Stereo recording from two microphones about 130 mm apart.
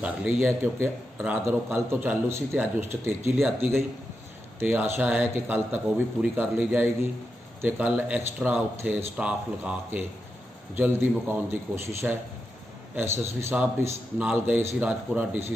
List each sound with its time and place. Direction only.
0.0 s a man's voice: 10° right (ahead or behind)
3.3 s a man's voice: 5° right (ahead or behind)